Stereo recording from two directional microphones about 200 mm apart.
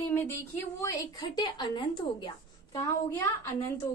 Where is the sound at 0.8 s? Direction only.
20° left (ahead or behind).